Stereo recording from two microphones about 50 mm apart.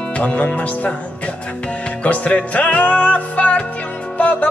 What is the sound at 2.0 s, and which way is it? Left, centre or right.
Music, left.